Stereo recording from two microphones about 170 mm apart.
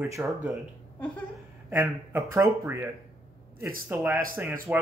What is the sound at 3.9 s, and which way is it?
Speech, 15° right (ahead or behind).